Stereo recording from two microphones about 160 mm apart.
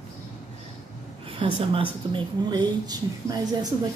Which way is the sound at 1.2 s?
35° right (ahead or behind).